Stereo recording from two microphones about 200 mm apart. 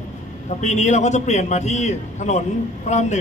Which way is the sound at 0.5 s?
35° left (ahead or behind).